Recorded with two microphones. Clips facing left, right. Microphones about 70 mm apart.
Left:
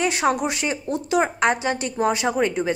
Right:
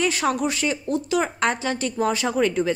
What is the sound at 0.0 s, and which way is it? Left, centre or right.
Speech, left.